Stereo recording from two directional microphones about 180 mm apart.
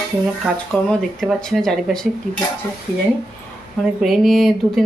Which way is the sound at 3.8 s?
Centre (ahead or behind).